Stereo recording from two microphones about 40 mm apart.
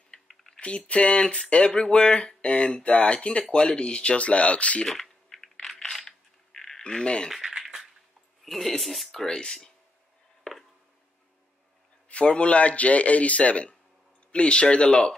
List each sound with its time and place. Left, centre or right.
0.3 s typing: centre
0.6 s a man's voice: left
4.8 s typing: centre
5.8 s coin: centre
6.8 s speech: left
7.2 s a sound: centre
8.5 s speech: centre
12.1 s a man's voice: left